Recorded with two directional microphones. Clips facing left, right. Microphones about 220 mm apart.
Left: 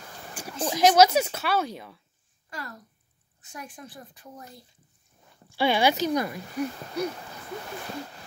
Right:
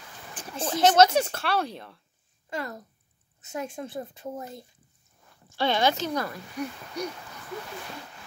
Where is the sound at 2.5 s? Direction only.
20° right (ahead or behind).